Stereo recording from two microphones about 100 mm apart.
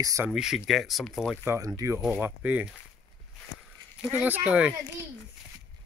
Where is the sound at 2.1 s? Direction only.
15° right (ahead or behind).